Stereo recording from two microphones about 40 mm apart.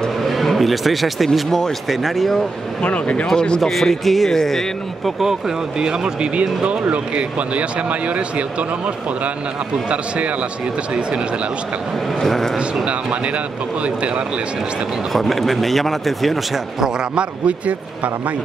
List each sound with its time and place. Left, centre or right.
0.2 s speech: centre
2.8 s speech: left
3.3 s speech: centre
3.6 s speech: centre
5.2 s a man's voice: centre; by 8.6 s right
9.8 s a man's voice: right
12.2 s a man's voice: centre
12.5 s a man's voice: right
15.1 s speech: centre
17.1 s a man's voice: right